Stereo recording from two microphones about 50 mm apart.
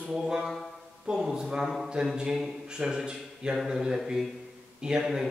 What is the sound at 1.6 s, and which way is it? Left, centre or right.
Speech, centre.